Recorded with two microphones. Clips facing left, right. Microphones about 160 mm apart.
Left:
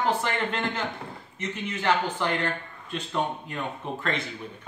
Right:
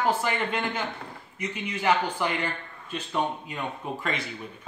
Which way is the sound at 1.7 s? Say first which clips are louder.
Right 1 dB; 10° right (ahead or behind).